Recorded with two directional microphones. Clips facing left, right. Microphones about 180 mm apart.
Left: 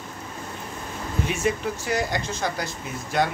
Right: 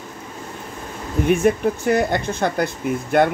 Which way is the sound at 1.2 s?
55° right (ahead or behind).